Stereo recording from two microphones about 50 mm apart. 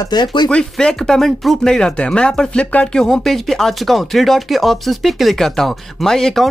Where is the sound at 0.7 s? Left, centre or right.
Centre.